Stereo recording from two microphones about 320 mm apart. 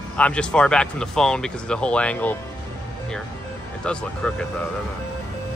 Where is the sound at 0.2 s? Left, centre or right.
Centre.